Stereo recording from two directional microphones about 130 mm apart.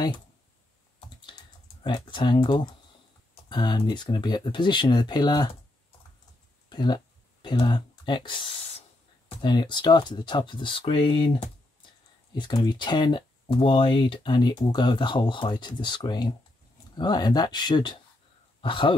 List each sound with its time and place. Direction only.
1.8 s speech: 35° left (ahead or behind)
6.7 s speech: 35° left (ahead or behind)
12.6 s speech: 35° left (ahead or behind)